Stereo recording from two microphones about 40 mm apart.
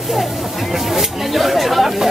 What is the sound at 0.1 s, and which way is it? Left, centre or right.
Chatter, centre.